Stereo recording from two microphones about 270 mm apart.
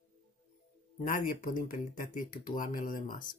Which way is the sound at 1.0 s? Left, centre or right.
Left.